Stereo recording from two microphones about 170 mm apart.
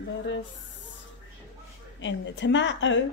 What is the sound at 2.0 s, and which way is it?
A woman's voice, 90° left.